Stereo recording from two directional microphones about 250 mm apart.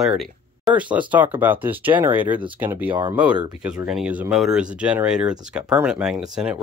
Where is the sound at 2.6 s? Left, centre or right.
Centre.